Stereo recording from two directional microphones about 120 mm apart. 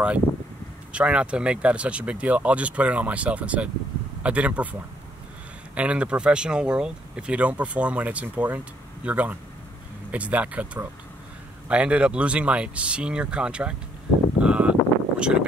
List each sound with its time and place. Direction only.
0.9 s speech: 10° right (ahead or behind)
5.8 s speech: 10° right (ahead or behind)
14.4 s a sound: 10° right (ahead or behind)